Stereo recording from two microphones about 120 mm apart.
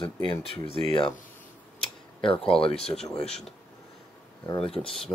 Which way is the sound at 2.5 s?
50° left (ahead or behind).